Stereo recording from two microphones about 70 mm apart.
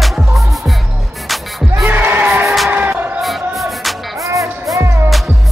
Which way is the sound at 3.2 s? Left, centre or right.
Centre.